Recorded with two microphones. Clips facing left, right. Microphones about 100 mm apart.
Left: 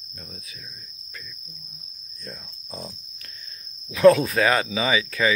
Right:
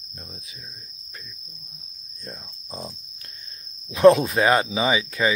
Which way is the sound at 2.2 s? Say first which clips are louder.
Right 1 dB; 25° right (ahead or behind).